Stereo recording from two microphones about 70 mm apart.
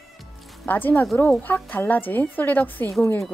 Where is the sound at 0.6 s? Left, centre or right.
Left.